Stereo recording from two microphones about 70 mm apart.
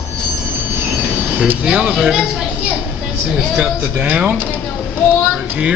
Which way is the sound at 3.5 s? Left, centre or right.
Right.